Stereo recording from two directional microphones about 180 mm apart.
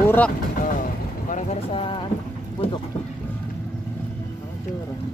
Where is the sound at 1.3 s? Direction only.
35° left (ahead or behind).